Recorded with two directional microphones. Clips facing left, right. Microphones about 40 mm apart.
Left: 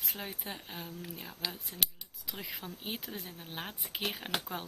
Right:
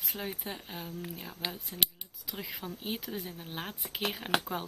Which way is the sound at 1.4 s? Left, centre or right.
Right.